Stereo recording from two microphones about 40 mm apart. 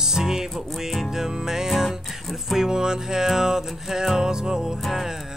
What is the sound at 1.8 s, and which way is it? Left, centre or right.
Music, centre.